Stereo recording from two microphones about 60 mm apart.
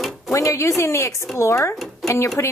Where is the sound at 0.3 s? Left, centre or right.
Left.